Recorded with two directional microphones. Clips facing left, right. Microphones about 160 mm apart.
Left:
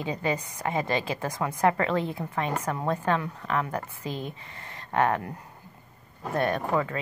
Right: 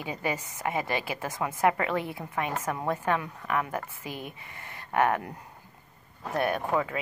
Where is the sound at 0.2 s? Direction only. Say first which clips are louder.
Left 2 dB; 15° right (ahead or behind).